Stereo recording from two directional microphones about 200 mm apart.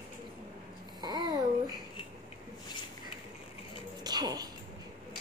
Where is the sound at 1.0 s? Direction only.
20° right (ahead or behind).